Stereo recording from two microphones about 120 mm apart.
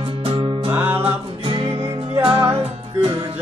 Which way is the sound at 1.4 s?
50° right (ahead or behind).